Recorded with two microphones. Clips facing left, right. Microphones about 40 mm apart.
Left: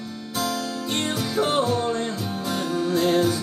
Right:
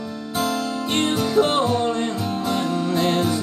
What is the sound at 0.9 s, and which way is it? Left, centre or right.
Music, right.